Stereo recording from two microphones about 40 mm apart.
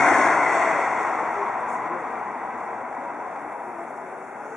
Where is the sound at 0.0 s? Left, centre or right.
Centre.